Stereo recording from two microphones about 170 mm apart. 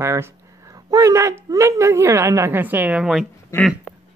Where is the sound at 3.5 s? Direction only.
15° left (ahead or behind).